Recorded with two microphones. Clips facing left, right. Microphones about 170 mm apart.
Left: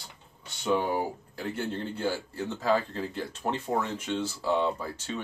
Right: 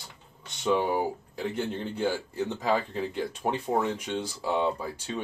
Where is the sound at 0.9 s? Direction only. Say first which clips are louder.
Right 2 dB; 20° right (ahead or behind).